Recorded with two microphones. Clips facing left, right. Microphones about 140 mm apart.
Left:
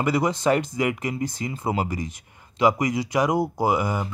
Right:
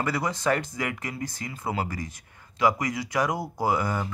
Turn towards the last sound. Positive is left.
turn(degrees=15)  # may be behind; listen again after turning